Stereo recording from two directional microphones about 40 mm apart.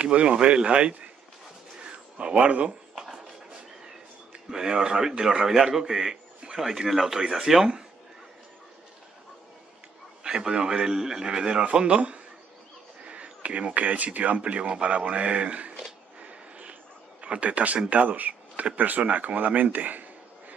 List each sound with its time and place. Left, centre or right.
0.0 s a man's voice: right
1.8 s a sound: right
3.8 s a man's voice: centre
10.2 s a man's voice: centre
16.2 s a sound: right
17.2 s a man's voice: right